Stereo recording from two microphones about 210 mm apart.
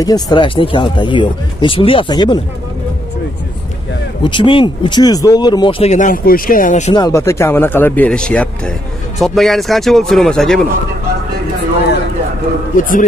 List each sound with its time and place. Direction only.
0.0 s speech: 20° left (ahead or behind)
4.2 s speech: 25° left (ahead or behind)
6.9 s speech: 15° left (ahead or behind)
12.7 s a man's voice: 40° left (ahead or behind)